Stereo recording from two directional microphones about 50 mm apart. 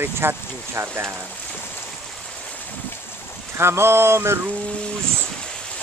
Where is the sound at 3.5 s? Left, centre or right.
Right.